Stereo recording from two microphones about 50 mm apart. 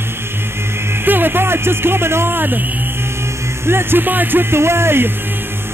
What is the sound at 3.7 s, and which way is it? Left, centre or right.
Speech, right.